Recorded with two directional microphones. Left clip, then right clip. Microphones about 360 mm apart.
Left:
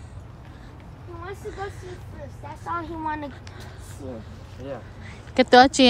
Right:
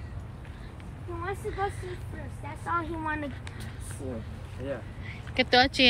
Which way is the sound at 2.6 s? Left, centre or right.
Centre.